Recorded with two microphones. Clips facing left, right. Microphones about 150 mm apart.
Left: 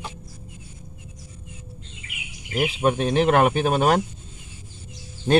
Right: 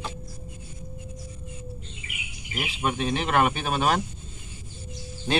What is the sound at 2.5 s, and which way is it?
Speech, 40° left (ahead or behind).